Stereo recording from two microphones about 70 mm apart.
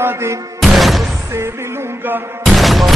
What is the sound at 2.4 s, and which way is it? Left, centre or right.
Music, centre.